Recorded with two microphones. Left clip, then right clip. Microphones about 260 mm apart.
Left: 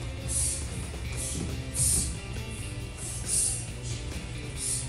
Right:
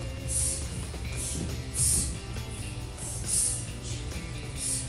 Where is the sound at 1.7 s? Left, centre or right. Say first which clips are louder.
Even; right.